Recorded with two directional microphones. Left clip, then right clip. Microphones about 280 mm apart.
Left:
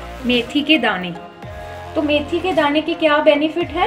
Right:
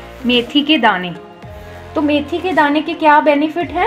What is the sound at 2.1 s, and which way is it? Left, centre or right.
A woman's voice, right.